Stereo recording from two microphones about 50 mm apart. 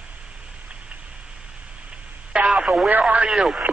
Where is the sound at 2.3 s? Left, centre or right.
Right.